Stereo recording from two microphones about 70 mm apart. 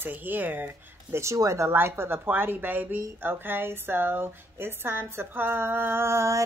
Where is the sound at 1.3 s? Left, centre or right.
Right.